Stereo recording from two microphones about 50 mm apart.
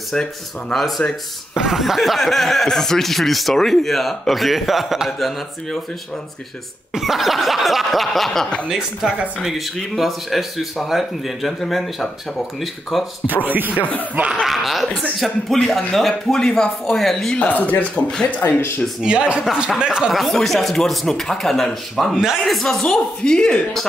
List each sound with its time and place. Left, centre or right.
0.1 s speech: centre
0.7 s speech: centre
7.0 s speech: centre
8.6 s speech: centre
13.3 s speech: right
14.4 s speech: centre
15.5 s speech: centre
16.9 s speech: centre
17.4 s speech: left
18.4 s speech: left
19.0 s speech: right
20.1 s speech: centre
22.1 s speech: centre
22.4 s speech: centre